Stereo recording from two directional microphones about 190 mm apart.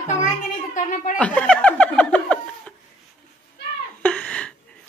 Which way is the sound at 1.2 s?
5° left (ahead or behind).